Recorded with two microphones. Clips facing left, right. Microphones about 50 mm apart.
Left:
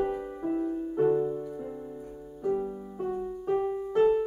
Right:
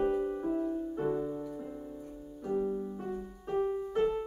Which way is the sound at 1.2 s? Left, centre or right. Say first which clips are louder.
Left 6 dB; centre.